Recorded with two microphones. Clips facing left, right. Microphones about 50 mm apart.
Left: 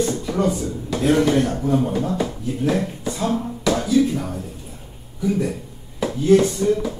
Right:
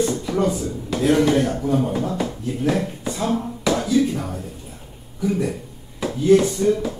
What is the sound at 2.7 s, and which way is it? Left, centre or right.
A man's voice, centre.